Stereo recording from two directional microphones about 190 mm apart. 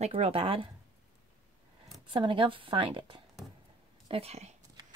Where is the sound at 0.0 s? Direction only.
30° right (ahead or behind).